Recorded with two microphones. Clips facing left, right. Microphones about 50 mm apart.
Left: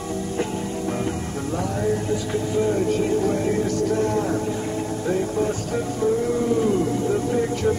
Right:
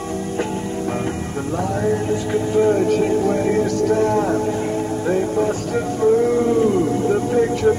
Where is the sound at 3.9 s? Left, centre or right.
Right.